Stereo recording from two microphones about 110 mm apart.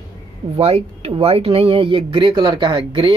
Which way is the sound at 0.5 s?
65° right (ahead or behind).